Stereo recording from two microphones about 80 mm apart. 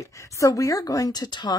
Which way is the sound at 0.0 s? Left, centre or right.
Left.